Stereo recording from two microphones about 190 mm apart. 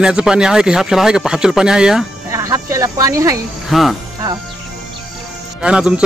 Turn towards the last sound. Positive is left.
turn(degrees=-5)  # may be behind; listen again after turning